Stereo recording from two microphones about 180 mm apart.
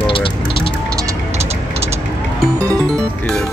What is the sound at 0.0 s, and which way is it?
Music, 30° left (ahead or behind).